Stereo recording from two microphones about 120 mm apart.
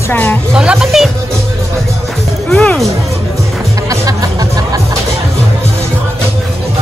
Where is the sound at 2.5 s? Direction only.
5° left (ahead or behind).